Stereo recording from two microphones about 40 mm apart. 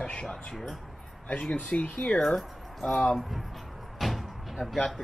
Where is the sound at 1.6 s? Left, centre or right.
Left.